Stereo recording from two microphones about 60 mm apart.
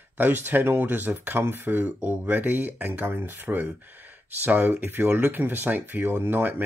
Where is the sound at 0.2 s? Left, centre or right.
Right.